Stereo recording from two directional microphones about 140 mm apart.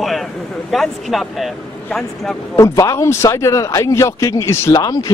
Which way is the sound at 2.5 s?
25° left (ahead or behind).